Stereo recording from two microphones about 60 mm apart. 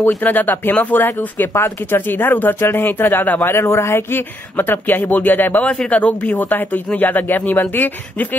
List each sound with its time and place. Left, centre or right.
0.2 s speech: left
3.4 s speech: left
5.7 s speech: left